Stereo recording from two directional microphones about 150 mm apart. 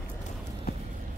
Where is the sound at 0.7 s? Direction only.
90° left.